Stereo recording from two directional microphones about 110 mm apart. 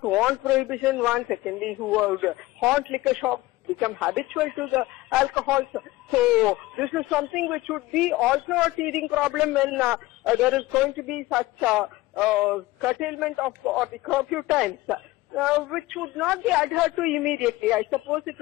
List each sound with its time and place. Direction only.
0.0 s a man's voice: 5° right (ahead or behind)